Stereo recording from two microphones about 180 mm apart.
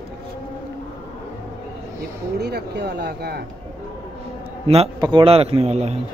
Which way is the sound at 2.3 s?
65° right (ahead or behind).